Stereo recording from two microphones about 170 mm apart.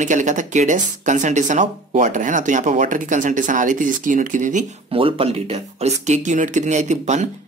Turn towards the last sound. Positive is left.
turn(degrees=-45)  # may be behind; listen again after turning